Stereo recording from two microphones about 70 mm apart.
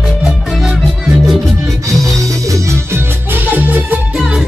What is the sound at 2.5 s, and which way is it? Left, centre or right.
Music, right.